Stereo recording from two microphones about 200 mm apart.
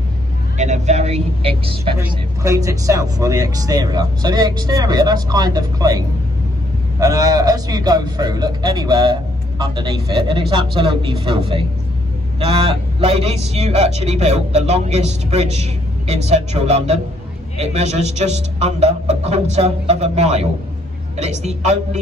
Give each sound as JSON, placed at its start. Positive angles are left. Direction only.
{"t": 0.6, "sound": "a man's voice", "side_deg": -35}
{"t": 2.0, "sound": "a man's voice", "side_deg": -15}